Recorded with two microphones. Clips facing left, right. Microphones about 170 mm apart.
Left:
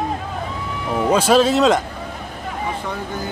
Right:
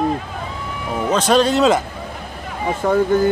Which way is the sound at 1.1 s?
5° left (ahead or behind).